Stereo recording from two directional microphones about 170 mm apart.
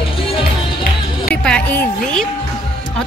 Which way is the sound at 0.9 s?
55° left (ahead or behind).